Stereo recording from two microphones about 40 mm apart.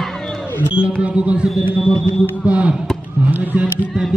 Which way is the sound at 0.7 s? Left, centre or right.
Right.